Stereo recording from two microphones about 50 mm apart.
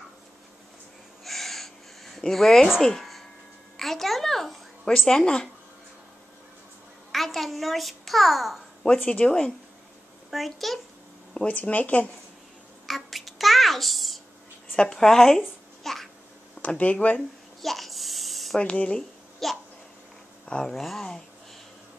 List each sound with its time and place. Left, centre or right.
1.2 s a sound: centre
7.1 s a child's voice: centre
9.0 s speech: left
10.3 s speech: centre
11.5 s speech: left
12.8 s babbling: centre
14.8 s speech: centre
15.8 s babbling: centre
16.6 s speech: left
17.6 s a sound: centre
18.6 s speech: left
19.4 s speech: centre
20.6 s speech: centre